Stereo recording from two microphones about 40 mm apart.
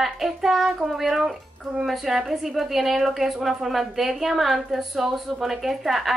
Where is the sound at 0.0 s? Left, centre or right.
Centre.